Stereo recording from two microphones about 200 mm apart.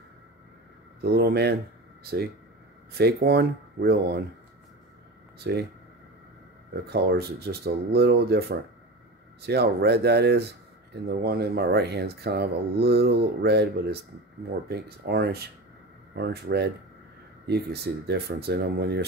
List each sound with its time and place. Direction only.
1.0 s speech: 55° right (ahead or behind)
3.0 s speech: 50° right (ahead or behind)
5.4 s speech: 55° right (ahead or behind)
6.7 s speech: 50° right (ahead or behind)